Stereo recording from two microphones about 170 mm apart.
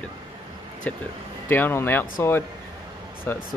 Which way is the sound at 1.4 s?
10° left (ahead or behind).